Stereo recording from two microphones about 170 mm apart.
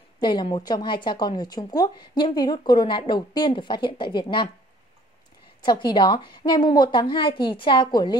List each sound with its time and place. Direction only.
0.2 s speech: 25° left (ahead or behind)
5.6 s speech: 25° left (ahead or behind)